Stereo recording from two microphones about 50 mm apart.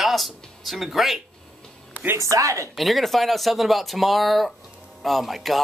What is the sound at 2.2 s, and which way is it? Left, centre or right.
Speech, right.